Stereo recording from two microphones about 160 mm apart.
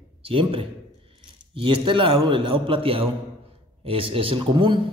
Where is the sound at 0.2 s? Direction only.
35° right (ahead or behind).